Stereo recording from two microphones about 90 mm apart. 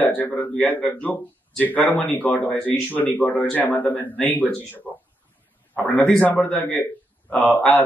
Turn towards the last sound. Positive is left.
turn(degrees=20)  # may be behind; listen again after turning